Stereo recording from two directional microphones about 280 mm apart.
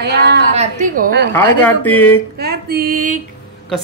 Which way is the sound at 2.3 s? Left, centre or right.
Right.